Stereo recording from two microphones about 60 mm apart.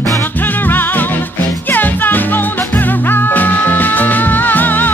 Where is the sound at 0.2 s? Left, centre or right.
Left.